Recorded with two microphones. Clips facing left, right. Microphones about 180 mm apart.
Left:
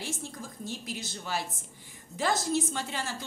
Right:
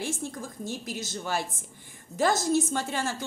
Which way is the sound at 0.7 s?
45° right (ahead or behind).